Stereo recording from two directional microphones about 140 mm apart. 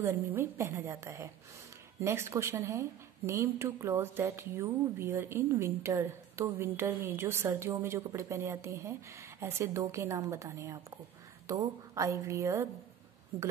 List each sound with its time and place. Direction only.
0.0 s a woman's voice: 20° right (ahead or behind)